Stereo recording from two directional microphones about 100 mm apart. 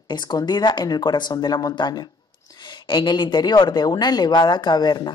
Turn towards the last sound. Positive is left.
turn(degrees=45)  # may be behind; listen again after turning